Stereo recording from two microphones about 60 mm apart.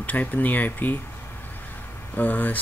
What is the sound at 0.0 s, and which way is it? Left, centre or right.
Speech, left.